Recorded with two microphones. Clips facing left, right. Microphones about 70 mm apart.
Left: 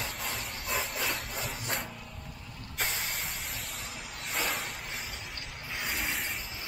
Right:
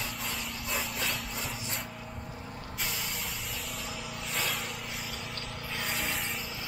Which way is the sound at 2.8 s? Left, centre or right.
Left.